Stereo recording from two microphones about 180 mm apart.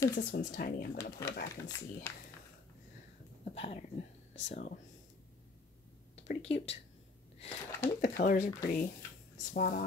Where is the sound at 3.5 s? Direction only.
35° left (ahead or behind).